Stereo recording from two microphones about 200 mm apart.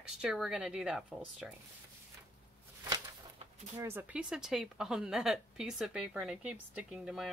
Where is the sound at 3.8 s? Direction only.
10° right (ahead or behind).